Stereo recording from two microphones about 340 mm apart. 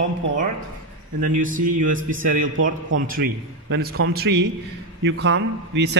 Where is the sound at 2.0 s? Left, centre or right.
Right.